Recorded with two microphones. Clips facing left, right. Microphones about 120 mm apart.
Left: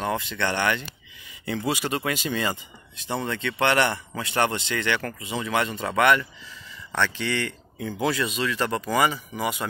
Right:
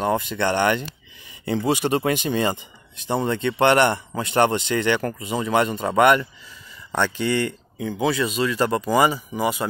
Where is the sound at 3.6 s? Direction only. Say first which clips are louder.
Right 5 dB; 50° right (ahead or behind).